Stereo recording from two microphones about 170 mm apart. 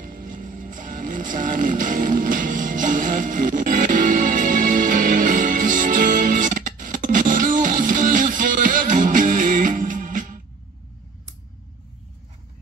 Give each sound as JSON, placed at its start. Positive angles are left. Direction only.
{"t": 0.0, "sound": "music", "side_deg": -55}